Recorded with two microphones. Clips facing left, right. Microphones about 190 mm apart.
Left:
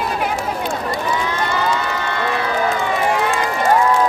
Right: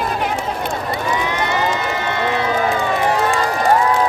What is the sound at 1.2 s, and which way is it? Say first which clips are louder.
Crowd: right 1 dB; 20° right (ahead or behind).